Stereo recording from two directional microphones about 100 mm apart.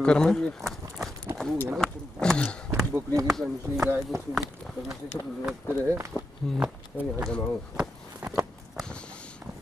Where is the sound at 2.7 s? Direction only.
35° right (ahead or behind).